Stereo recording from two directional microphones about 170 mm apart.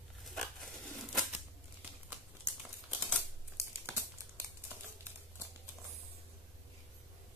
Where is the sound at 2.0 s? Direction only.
15° right (ahead or behind).